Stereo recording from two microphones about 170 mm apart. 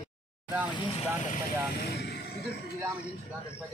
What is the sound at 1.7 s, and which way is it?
Speech, 75° left (ahead or behind).